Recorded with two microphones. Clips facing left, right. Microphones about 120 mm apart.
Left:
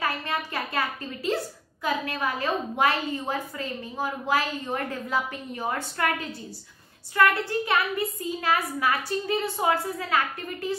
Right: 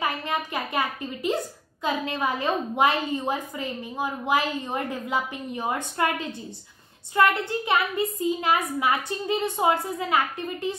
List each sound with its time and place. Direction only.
0.0 s a woman's voice: 20° right (ahead or behind)